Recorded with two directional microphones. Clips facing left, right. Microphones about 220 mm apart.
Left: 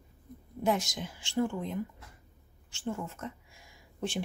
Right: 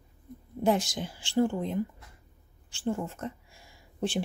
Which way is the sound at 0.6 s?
30° right (ahead or behind).